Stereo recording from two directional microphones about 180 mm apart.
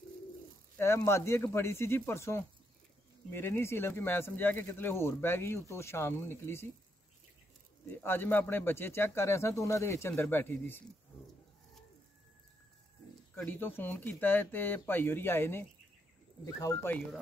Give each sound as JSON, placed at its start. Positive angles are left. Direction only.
{"t": 0.7, "sound": "speech", "side_deg": 15}
{"t": 7.9, "sound": "speech", "side_deg": 10}
{"t": 13.3, "sound": "speech", "side_deg": 10}